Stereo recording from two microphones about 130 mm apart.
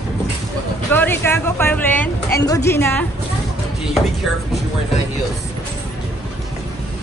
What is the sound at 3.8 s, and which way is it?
Speech, centre (ahead or behind).